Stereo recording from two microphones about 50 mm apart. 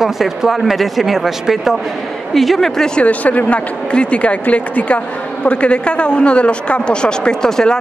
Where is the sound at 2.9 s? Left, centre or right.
Left.